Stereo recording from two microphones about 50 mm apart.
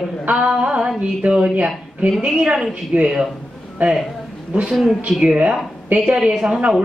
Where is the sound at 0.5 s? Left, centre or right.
Centre.